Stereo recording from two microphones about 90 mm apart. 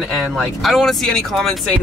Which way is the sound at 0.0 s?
Centre (ahead or behind).